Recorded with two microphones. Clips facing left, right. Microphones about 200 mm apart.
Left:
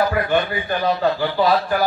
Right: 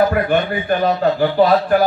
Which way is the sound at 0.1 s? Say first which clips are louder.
Right 3 dB; 50° right (ahead or behind).